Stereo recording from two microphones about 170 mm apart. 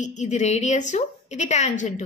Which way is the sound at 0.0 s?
45° left (ahead or behind).